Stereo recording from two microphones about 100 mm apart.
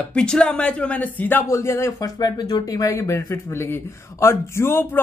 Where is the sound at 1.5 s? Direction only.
25° left (ahead or behind).